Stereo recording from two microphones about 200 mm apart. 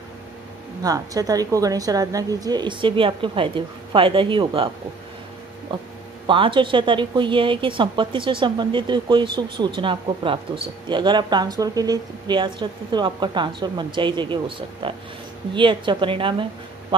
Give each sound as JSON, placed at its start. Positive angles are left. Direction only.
{"t": 0.8, "sound": "speech", "side_deg": -20}
{"t": 5.7, "sound": "speech", "side_deg": -25}